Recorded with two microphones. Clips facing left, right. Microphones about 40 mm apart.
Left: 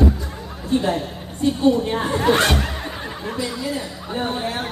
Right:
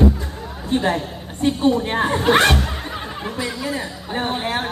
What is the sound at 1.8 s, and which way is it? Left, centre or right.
Speech, right.